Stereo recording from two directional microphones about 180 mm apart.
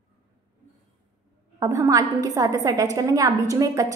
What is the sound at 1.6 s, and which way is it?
A woman's voice, 20° right (ahead or behind).